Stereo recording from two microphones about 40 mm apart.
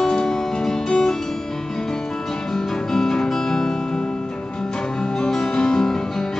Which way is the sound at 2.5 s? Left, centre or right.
Centre.